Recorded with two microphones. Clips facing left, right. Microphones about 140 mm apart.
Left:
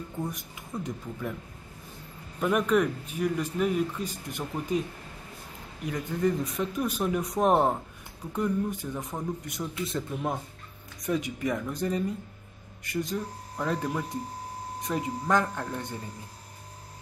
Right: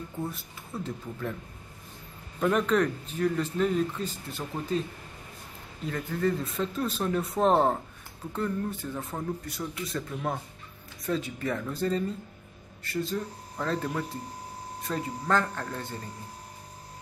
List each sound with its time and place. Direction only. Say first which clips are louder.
0.3 s speech: left 1 dB; 15° left (ahead or behind)
2.4 s a man's voice: even; 10° left (ahead or behind)